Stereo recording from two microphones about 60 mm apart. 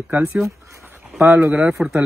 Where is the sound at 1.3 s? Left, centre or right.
Centre.